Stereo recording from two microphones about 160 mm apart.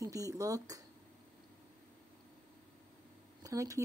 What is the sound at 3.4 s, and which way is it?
Speech, 20° right (ahead or behind).